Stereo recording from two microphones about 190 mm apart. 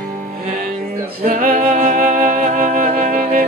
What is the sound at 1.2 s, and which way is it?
Music, 45° right (ahead or behind).